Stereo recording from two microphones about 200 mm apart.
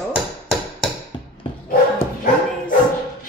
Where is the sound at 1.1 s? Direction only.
25° left (ahead or behind).